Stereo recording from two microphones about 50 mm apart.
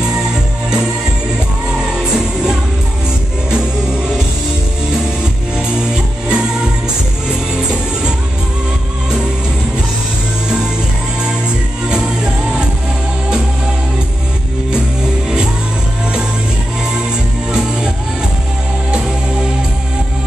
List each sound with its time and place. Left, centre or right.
0.1 s music: centre
5.8 s music: centre